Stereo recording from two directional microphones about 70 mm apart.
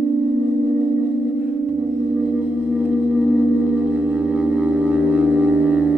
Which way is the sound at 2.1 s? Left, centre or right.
Centre.